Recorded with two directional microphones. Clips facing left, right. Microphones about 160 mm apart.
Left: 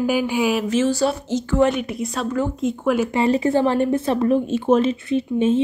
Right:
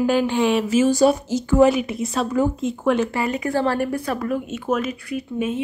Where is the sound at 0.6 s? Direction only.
10° right (ahead or behind).